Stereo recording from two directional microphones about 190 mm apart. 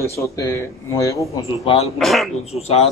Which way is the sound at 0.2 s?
15° left (ahead or behind).